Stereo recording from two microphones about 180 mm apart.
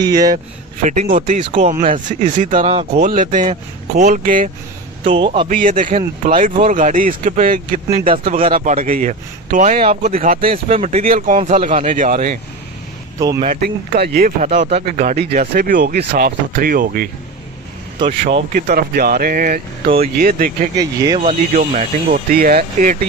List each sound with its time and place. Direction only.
0.0 s a man's voice: 20° right (ahead or behind)
0.8 s speech: 40° right (ahead or behind)
5.0 s a man's voice: 30° right (ahead or behind)
5.5 s speech: 50° right (ahead or behind)
8.2 s speech: 35° right (ahead or behind)
10.1 s speech: 50° right (ahead or behind)
10.4 s speech: 30° right (ahead or behind); by 12.4 s 50° right (ahead or behind)
13.5 s speech: 60° right (ahead or behind); by 15.0 s 40° right (ahead or behind)
15.3 s speech: 50° right (ahead or behind)
15.8 s speech: 65° right (ahead or behind)
18.5 s speech: 50° right (ahead or behind)
20.7 s a man's voice: 20° right (ahead or behind)
21.2 s speech: 40° right (ahead or behind)